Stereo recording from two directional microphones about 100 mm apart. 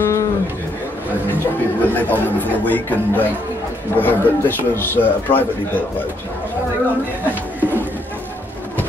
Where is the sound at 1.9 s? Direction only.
15° left (ahead or behind).